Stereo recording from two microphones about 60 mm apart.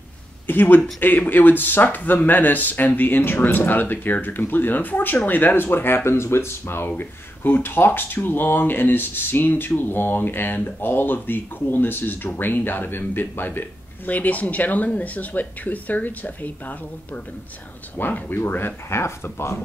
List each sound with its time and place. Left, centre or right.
0.5 s speech: left
6.9 s a man's voice: left
18.9 s speech: left